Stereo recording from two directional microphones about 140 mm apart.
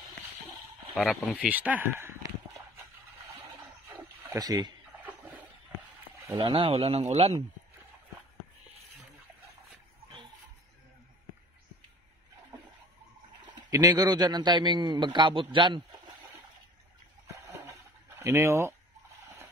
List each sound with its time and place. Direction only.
1.3 s speech: 10° right (ahead or behind)
4.4 s speech: 25° right (ahead or behind)
5.0 s a sound: 10° right (ahead or behind)
6.3 s speech: 35° right (ahead or behind)
13.5 s a man's voice: 25° right (ahead or behind)
18.2 s speech: 20° right (ahead or behind)